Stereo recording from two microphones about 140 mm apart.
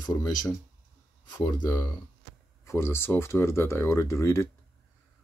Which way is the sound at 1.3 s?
25° left (ahead or behind).